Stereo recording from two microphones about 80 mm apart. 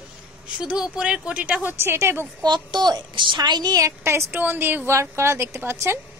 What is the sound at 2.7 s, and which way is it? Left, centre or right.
A woman's voice, right.